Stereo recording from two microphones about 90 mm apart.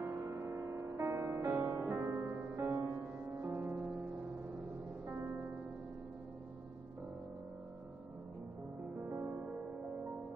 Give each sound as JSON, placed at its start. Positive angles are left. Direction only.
{"t": 0.1, "sound": "music", "side_deg": -35}
{"t": 5.0, "sound": "music", "side_deg": -20}
{"t": 9.1, "sound": "music", "side_deg": -35}